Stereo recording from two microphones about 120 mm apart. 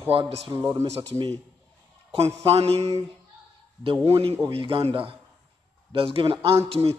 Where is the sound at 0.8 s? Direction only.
60° right (ahead or behind).